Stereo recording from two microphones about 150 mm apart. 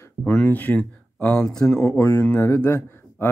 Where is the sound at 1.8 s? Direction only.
15° left (ahead or behind).